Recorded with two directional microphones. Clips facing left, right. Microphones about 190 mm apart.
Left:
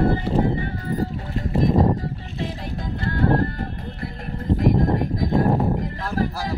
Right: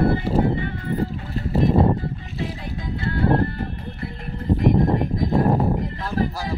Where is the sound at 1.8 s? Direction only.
40° left (ahead or behind).